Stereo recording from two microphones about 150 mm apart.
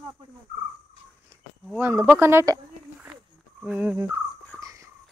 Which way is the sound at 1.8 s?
15° right (ahead or behind).